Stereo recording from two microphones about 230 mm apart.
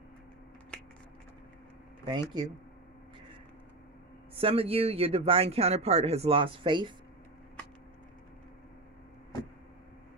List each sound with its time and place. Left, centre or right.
2.0 s speech: centre
4.4 s speech: right